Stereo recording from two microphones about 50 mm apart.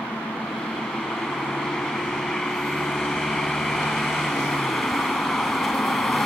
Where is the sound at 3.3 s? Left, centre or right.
Centre.